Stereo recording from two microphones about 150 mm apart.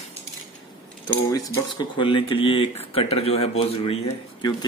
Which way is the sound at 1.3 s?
25° left (ahead or behind).